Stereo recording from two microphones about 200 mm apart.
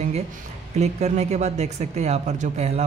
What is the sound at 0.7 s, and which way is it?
A man's voice, 35° right (ahead or behind).